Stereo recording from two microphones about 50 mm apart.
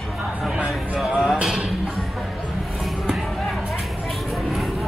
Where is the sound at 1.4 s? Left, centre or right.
Right.